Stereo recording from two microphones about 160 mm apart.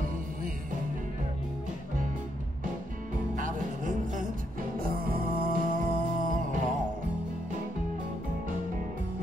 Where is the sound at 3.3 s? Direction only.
55° right (ahead or behind).